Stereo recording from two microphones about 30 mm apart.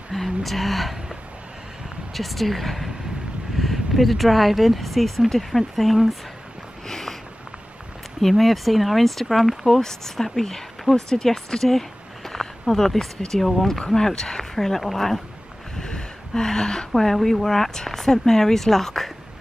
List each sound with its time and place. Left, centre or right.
0.1 s speech: centre
2.1 s speech: centre
6.9 s a sound: centre
8.2 s speech: centre
9.7 s speech: centre
10.9 s speech: left
11.2 s speech: centre
12.3 s a sound: centre
13.3 s speech: centre
15.8 s a sound: left
16.9 s a woman's voice: centre